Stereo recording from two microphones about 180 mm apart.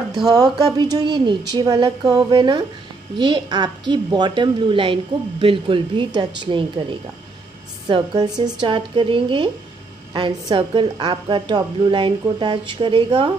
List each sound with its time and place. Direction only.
0.3 s a woman's voice: 20° right (ahead or behind)